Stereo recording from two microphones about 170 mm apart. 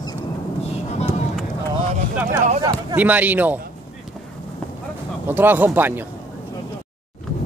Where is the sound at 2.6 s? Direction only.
25° right (ahead or behind).